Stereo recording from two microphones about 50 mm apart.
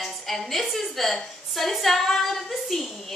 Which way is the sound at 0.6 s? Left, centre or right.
Centre.